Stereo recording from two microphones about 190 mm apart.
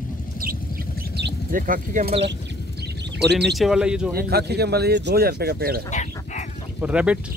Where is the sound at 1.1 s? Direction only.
60° right (ahead or behind).